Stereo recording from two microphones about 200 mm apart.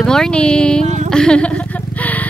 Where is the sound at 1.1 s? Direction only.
5° left (ahead or behind).